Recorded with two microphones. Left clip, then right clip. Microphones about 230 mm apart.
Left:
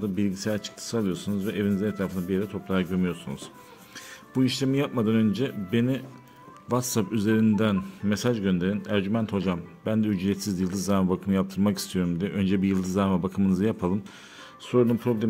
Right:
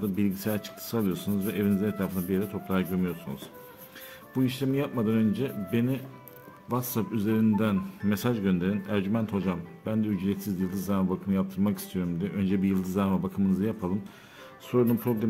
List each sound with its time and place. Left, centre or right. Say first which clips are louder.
0.0 s speech: left 1 dB; centre
4.4 s speech: left 3 dB; left